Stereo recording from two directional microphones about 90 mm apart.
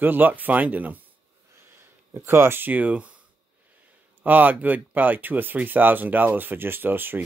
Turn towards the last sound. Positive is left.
turn(degrees=-20)  # may be behind; listen again after turning